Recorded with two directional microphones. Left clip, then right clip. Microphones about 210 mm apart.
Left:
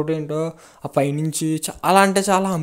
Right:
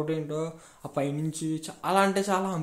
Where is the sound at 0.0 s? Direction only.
35° left (ahead or behind).